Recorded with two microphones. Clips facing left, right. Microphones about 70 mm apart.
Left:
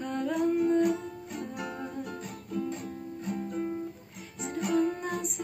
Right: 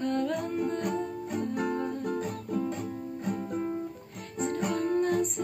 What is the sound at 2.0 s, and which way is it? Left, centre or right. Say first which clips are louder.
Music: right 8 dB; right.